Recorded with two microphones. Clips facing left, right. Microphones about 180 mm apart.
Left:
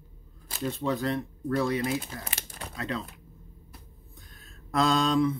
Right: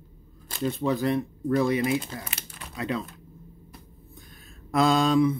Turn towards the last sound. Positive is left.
turn(degrees=-10)  # may be behind; listen again after turning